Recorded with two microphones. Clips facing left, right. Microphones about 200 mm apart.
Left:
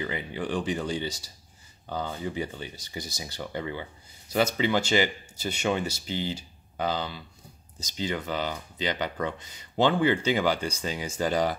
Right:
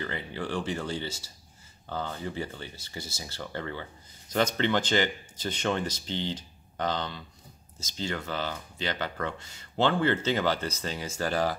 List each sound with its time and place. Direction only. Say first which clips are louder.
0.0 s speech: left 2 dB; 15° left (ahead or behind)